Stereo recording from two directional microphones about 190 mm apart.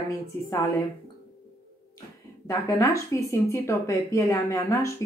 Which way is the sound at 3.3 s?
15° left (ahead or behind).